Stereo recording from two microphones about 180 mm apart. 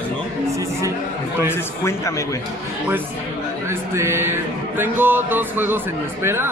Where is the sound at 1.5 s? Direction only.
15° left (ahead or behind).